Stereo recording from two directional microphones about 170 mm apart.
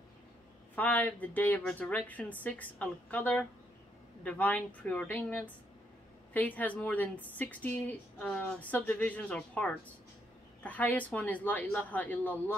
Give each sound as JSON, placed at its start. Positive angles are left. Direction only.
{"t": 0.7, "sound": "a woman's voice", "side_deg": 10}